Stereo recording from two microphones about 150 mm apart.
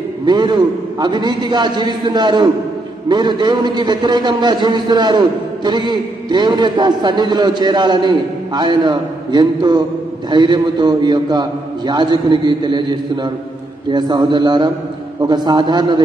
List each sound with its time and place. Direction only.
0.2 s a man's voice: 30° right (ahead or behind)